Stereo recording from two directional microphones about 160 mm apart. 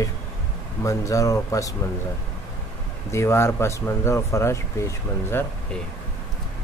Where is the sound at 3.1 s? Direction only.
15° left (ahead or behind).